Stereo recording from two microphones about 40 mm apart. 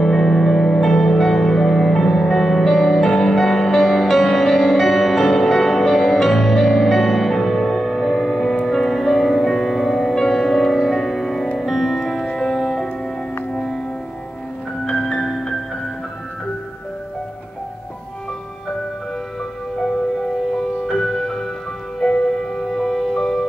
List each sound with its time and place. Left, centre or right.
0.0 s music: centre
14.9 s music: centre
19.8 s music: centre